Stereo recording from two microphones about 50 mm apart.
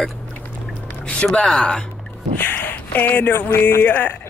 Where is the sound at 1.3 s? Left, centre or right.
Centre.